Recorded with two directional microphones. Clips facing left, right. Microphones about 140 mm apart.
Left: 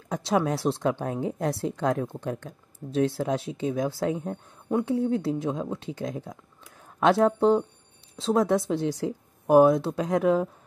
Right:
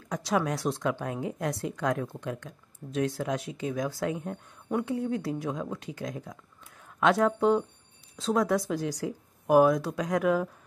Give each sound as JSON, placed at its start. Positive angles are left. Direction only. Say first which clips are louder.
{"t": 0.1, "sound": "speech", "louder": "left 3 dB", "side_deg": 25}